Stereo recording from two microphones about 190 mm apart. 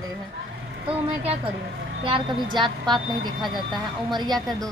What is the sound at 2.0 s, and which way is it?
A woman's voice, 25° right (ahead or behind).